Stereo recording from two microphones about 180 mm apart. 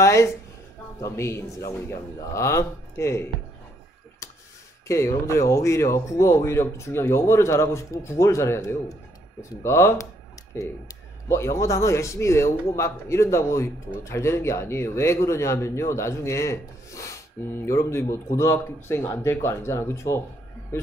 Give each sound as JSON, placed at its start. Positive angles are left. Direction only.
{"t": 0.0, "sound": "a woman's voice", "side_deg": 15}
{"t": 4.8, "sound": "speech", "side_deg": 15}
{"t": 11.2, "sound": "speech", "side_deg": 15}